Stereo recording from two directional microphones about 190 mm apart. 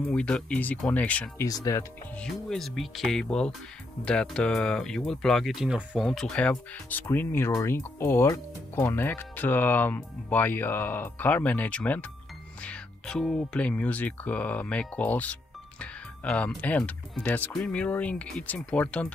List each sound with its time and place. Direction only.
0.0 s speech: 5° left (ahead or behind)
1.5 s speech: 20° left (ahead or behind)
2.1 s speech: centre (ahead or behind)